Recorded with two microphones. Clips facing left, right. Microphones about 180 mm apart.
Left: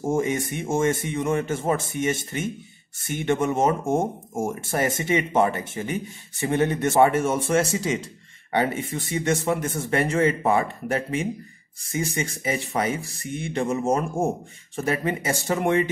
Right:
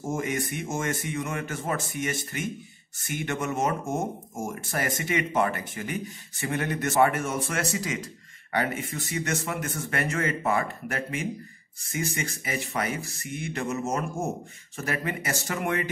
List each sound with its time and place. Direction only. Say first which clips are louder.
0.0 s speech: left 6 dB; 30° left (ahead or behind)